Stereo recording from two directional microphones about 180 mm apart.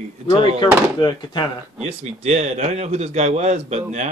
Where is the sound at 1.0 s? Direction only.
25° left (ahead or behind).